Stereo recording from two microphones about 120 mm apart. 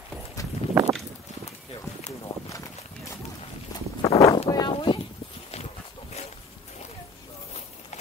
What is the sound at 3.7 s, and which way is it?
Walk, 30° left (ahead or behind).